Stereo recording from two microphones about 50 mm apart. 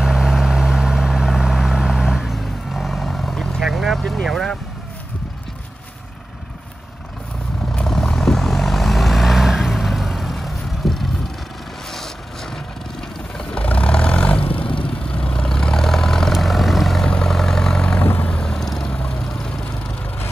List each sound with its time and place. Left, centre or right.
0.0 s vehicle: centre
7.8 s vehicle: centre
17.0 s vehicle: centre
18.0 s vehicle: left
18.3 s vehicle: centre
18.9 s vehicle: centre